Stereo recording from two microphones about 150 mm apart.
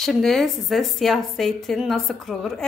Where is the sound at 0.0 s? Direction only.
5° left (ahead or behind).